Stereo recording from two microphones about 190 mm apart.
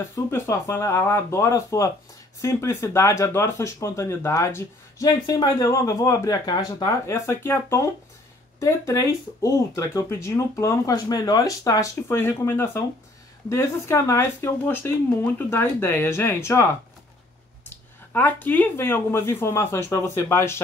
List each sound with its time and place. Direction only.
0.1 s speech: 15° left (ahead or behind)
17.6 s speech: 10° left (ahead or behind)